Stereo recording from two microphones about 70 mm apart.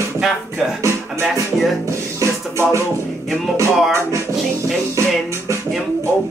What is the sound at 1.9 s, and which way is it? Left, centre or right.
Music, right.